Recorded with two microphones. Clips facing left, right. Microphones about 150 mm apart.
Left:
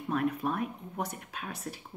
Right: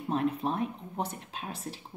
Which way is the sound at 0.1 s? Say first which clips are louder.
Right 1 dB; 30° right (ahead or behind).